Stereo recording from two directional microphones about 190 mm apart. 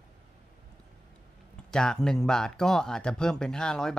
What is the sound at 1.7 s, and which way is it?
Speech, 5° left (ahead or behind).